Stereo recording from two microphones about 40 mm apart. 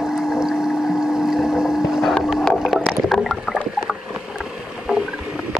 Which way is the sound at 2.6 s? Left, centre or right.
Centre.